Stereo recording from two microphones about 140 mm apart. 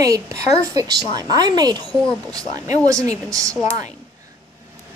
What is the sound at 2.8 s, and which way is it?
Speech, 25° right (ahead or behind).